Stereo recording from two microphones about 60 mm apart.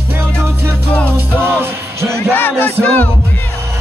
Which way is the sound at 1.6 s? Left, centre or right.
Right.